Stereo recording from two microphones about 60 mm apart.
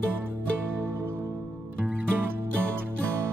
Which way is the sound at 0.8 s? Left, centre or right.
Right.